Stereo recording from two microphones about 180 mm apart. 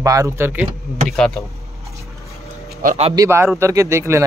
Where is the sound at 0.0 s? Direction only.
20° right (ahead or behind).